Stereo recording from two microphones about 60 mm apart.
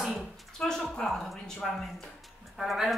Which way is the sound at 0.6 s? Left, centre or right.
Centre.